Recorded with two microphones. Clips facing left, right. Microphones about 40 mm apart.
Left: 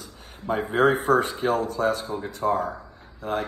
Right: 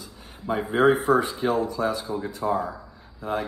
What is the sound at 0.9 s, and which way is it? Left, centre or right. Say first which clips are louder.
Speech: even; left.